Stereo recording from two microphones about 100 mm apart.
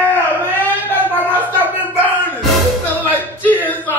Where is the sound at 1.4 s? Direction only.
15° right (ahead or behind).